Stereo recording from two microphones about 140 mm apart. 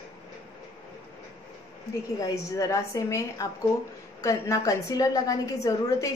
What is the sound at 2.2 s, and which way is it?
A woman's voice, 25° left (ahead or behind).